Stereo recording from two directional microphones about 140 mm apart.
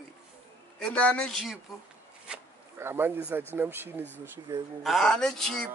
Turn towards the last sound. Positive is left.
turn(degrees=5)  # may be behind; listen again after turning